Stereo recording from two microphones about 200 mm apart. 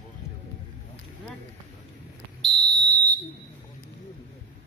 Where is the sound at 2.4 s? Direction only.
Centre (ahead or behind).